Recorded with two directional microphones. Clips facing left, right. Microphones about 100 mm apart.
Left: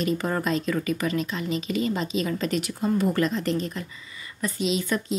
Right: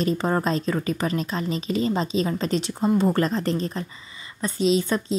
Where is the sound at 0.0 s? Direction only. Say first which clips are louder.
Right 3 dB; 30° right (ahead or behind).